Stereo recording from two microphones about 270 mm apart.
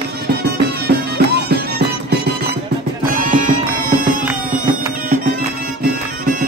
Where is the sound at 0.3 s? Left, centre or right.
Right.